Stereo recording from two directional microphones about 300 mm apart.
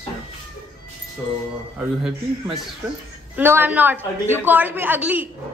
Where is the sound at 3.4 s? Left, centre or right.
Centre.